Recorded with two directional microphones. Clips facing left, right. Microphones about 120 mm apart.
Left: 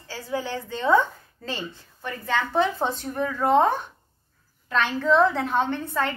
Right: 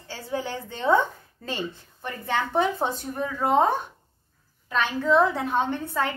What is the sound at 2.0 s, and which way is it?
A woman's voice, 15° right (ahead or behind).